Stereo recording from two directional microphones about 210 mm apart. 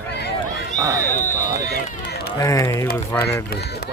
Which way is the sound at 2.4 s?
15° left (ahead or behind).